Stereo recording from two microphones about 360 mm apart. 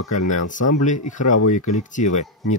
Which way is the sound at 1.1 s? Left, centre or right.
Left.